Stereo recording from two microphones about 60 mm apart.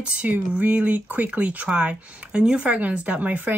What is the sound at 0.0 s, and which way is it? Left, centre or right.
Speech, right.